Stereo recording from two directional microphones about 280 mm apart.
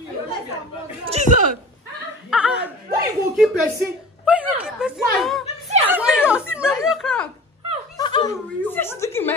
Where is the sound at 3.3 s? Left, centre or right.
Centre.